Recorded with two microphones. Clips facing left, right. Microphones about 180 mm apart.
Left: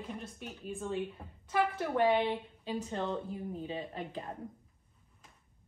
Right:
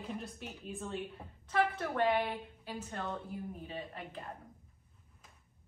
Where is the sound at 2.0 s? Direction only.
15° left (ahead or behind).